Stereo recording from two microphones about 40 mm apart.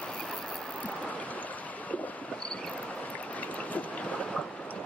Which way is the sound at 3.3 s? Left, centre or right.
Left.